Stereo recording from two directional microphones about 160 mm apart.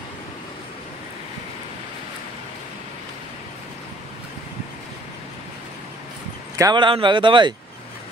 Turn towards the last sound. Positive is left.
turn(degrees=-30)  # may be behind; listen again after turning